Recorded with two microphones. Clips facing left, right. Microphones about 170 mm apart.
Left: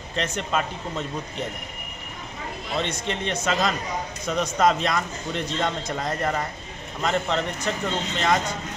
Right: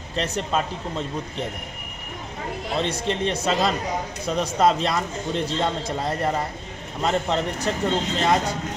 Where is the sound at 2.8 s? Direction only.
35° right (ahead or behind).